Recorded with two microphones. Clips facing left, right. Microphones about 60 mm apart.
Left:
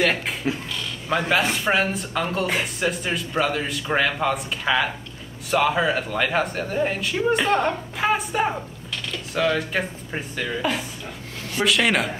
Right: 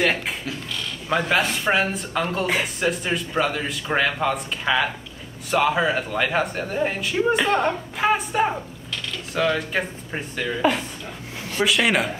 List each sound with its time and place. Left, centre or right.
0.0 s speech: centre
1.3 s speech: centre